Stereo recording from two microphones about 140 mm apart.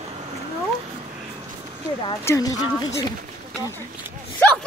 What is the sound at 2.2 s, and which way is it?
Speech, 20° left (ahead or behind).